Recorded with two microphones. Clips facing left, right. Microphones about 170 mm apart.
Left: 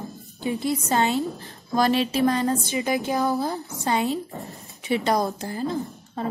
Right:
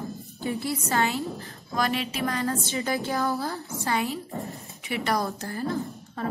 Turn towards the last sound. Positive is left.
turn(degrees=20)  # may be behind; listen again after turning